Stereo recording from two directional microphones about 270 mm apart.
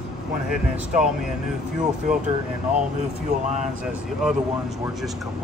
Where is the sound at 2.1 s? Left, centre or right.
Right.